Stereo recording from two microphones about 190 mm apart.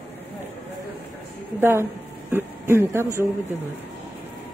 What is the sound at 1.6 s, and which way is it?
A man's voice, 15° right (ahead or behind).